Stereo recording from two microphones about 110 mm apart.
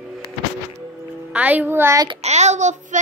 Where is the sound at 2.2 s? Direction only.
90° right.